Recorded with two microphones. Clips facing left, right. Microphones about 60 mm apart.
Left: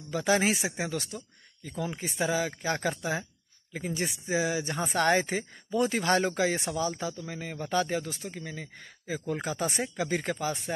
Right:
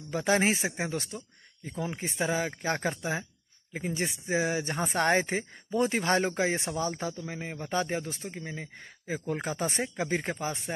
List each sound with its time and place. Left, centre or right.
0.1 s speech: right
6.8 s speech: right